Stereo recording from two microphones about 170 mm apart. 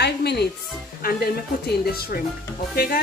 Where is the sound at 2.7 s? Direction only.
60° left (ahead or behind).